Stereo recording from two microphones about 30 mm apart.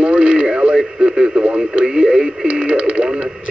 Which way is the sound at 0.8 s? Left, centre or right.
Right.